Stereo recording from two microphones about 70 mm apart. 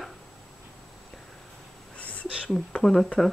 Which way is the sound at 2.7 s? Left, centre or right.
Centre.